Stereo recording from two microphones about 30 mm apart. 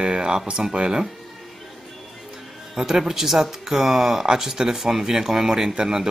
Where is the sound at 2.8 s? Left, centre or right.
Centre.